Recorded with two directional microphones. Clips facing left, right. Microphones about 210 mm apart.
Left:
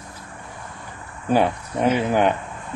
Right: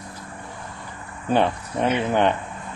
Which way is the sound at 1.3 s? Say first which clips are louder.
Left 1 dB; 10° left (ahead or behind).